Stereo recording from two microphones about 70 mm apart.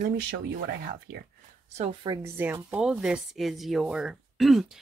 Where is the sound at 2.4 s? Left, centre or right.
Right.